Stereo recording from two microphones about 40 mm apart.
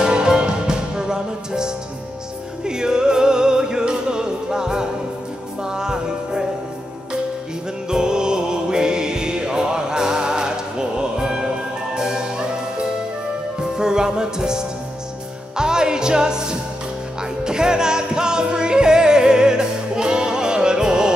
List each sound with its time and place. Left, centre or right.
0.0 s music: centre
7.9 s music: centre